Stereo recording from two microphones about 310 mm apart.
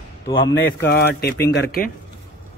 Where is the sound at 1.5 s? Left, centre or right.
Left.